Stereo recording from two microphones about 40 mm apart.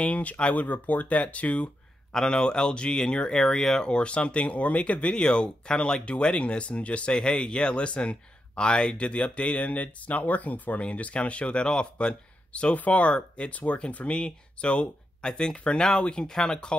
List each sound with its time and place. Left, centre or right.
0.0 s speech: left
2.1 s speech: centre
3.9 s speech: left
7.2 s speech: centre
12.7 s speech: left; by 16.7 s centre